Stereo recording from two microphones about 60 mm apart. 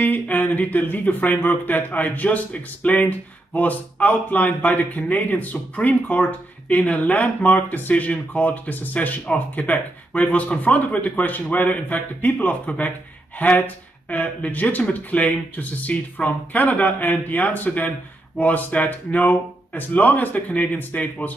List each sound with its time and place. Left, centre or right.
0.0 s speech: left